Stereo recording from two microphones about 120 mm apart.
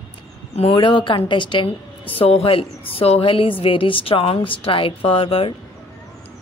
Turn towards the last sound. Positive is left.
turn(degrees=50)  # may be behind; listen again after turning